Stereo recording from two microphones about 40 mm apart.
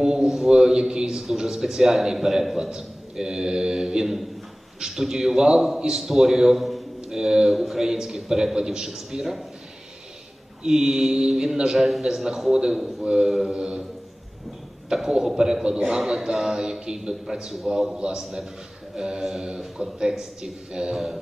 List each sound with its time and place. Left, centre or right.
0.0 s a man's voice: centre
7.2 s a man's voice: centre
7.5 s a man's voice: centre
10.6 s a man's voice: centre
13.0 s a man's voice: centre
15.0 s a man's voice: centre
16.5 s a man's voice: centre
20.9 s speech: centre